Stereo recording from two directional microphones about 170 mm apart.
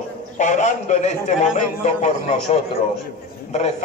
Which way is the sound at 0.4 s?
45° left (ahead or behind).